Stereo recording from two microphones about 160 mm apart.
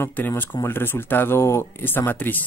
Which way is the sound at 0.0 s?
15° left (ahead or behind).